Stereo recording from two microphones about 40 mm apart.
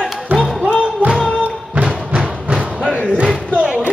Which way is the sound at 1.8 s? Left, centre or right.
Centre.